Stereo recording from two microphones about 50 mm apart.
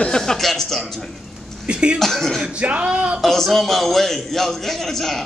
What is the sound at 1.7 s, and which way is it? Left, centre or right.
Speech, right.